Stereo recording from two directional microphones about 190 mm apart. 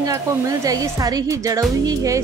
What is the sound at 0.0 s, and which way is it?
Music, 20° right (ahead or behind).